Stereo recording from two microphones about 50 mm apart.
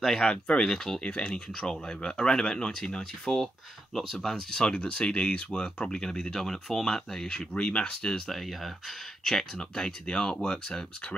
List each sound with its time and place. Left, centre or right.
0.2 s speech: centre
1.0 s speech: left; by 4.4 s centre
4.7 s speech: left
7.5 s speech: left
8.3 s speech: centre